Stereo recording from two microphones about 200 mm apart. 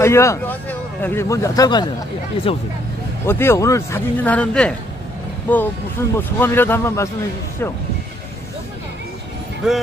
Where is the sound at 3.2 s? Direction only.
10° left (ahead or behind).